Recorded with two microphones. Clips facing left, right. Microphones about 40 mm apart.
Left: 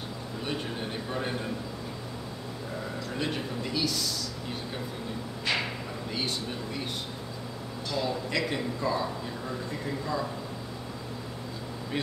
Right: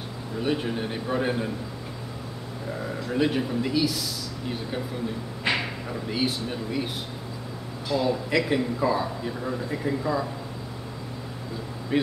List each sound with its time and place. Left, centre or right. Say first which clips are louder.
0.4 s a man's voice: right 8 dB; centre
3.1 s a man's voice: right 9 dB; centre
5.5 s a sound: right 4 dB; right
6.0 s a man's voice: right 6 dB; centre
7.9 s a man's voice: right 6 dB; centre
11.9 s a man's voice: right 8 dB; centre